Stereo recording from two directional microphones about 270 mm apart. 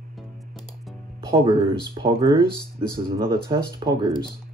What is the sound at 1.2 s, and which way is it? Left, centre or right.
Speech, centre.